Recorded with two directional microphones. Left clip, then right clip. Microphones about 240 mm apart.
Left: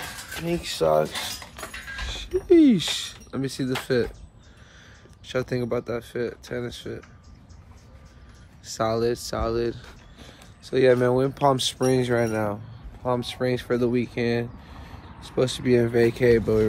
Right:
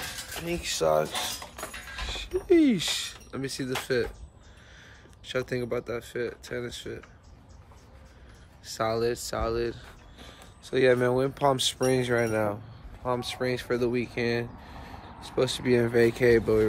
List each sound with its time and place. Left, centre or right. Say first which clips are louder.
0.5 s speech: left 3 dB; centre
1.1 s cutlery: left 1 dB; right
2.0 s music: left 1 dB; centre
2.4 s speech: left 5 dB; centre
5.2 s speech: left 3 dB; centre
8.6 s speech: left 3 dB; centre